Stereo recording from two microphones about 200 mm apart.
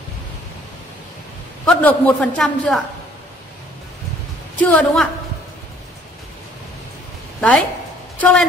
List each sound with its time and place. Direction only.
1.7 s a man's voice: 5° left (ahead or behind)
4.6 s a man's voice: 5° left (ahead or behind)
7.3 s a woman's voice: centre (ahead or behind)